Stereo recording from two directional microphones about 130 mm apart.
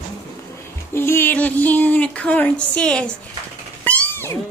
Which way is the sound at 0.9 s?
20° left (ahead or behind).